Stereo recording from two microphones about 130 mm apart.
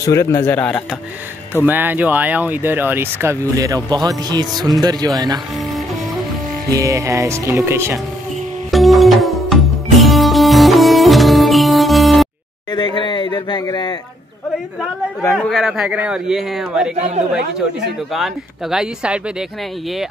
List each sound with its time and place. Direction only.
0.0 s speech: 25° left (ahead or behind)
1.5 s speech: 15° right (ahead or behind); by 5.4 s 30° right (ahead or behind)
6.7 s speech: 25° right (ahead or behind)
8.7 s music: centre (ahead or behind)
12.7 s speech: 35° left (ahead or behind)
15.4 s a man's voice: centre (ahead or behind)
18.1 s a man's voice: 5° right (ahead or behind)